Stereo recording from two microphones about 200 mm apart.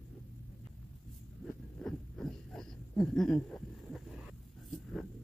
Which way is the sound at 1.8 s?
Centre (ahead or behind).